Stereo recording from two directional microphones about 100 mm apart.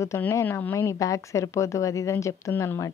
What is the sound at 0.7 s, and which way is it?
A woman's voice, 30° left (ahead or behind).